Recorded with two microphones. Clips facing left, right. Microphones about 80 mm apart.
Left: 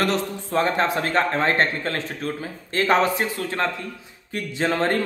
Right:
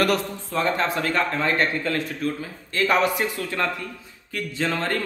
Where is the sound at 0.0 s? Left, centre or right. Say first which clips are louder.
Right 1 dB; left.